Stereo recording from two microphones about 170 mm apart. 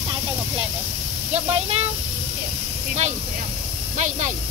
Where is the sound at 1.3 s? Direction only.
35° right (ahead or behind).